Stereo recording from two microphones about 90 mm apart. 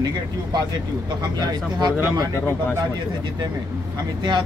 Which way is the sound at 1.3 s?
50° right (ahead or behind).